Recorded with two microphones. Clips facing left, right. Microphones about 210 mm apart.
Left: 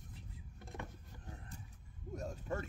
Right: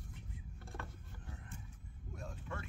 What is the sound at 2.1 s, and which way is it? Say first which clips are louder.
Mechanisms: left 6 dB; 40° left (ahead or behind).